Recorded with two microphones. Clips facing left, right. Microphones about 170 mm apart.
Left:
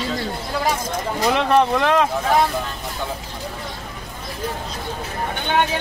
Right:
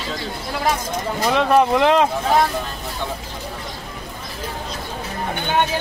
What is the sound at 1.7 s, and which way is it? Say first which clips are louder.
Speech: right 2 dB; 20° right (ahead or behind).